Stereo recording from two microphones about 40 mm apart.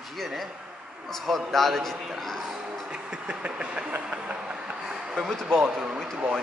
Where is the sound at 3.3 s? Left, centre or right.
Right.